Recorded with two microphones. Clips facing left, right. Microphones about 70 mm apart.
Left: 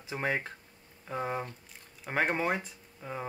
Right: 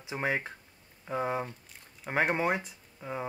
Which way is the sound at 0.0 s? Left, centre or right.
Centre.